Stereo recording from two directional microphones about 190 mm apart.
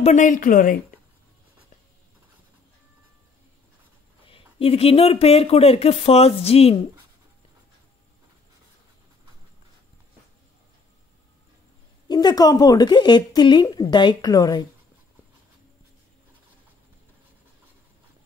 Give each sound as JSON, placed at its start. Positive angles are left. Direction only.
{"t": 0.0, "sound": "speech", "side_deg": 40}
{"t": 4.3, "sound": "speech", "side_deg": 30}
{"t": 12.1, "sound": "a woman's voice", "side_deg": 20}